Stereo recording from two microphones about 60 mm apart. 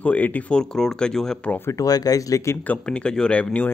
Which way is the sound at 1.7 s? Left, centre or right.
Left.